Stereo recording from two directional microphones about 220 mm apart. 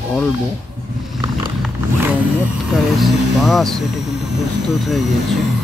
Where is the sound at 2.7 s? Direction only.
Centre (ahead or behind).